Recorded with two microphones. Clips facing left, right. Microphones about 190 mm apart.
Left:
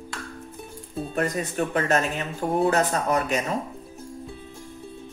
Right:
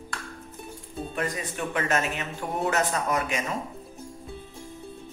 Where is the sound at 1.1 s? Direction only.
45° left (ahead or behind).